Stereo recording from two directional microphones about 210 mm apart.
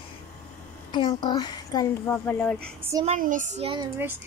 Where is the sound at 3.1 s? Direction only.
40° right (ahead or behind).